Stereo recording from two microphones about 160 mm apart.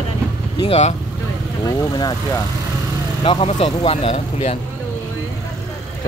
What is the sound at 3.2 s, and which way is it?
Speech, 35° left (ahead or behind).